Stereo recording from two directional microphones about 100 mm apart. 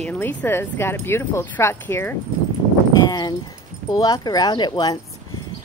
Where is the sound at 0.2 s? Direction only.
20° left (ahead or behind).